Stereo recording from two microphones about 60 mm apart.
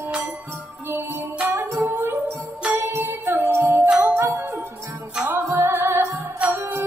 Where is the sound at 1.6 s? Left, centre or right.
Right.